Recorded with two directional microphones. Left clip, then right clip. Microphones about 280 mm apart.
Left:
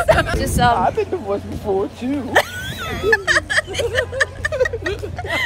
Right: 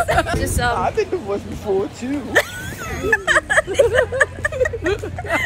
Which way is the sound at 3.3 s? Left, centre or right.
Centre.